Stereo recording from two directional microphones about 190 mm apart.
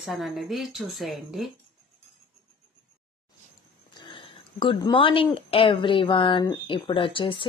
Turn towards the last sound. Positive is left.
turn(degrees=25)  # may be behind; listen again after turning